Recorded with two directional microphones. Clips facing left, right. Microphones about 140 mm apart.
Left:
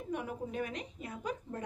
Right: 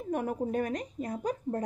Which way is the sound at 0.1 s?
45° right (ahead or behind).